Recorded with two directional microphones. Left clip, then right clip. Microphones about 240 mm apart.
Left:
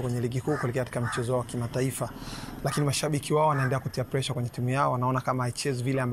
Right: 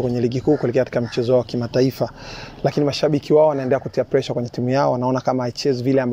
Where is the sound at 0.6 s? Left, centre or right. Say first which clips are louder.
Right 12 dB; right.